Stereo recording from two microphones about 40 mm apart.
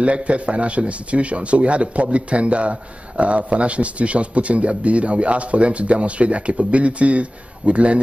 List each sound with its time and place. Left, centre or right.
0.0 s a man's voice: right